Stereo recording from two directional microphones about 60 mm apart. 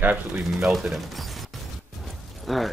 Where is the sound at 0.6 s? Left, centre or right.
Centre.